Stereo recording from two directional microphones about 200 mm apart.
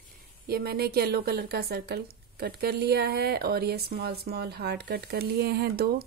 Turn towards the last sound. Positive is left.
turn(degrees=-50)  # may be behind; listen again after turning